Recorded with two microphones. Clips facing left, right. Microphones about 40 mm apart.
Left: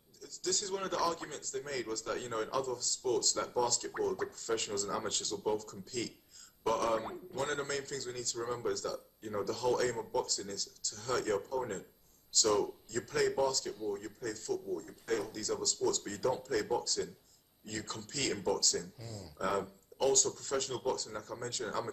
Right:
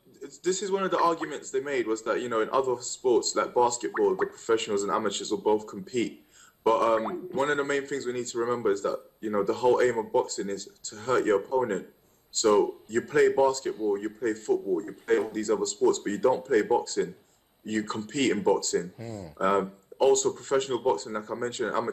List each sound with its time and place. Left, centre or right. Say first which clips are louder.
0.2 s speech: right 9 dB; right